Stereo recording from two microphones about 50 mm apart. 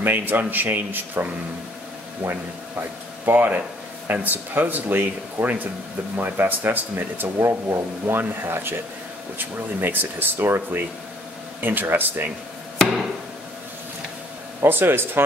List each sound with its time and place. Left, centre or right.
0.0 s speech: right
7.3 s speech: right
8.5 s speech: right
9.8 s speech: right
14.6 s speech: right